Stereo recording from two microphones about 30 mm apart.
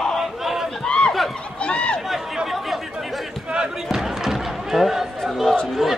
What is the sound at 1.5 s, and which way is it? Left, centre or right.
Run, left.